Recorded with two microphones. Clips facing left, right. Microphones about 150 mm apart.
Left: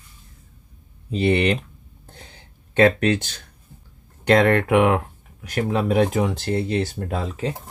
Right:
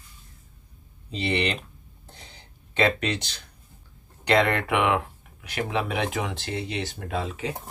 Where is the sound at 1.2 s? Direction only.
55° left (ahead or behind).